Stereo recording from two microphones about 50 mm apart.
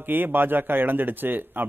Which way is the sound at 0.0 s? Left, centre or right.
Right.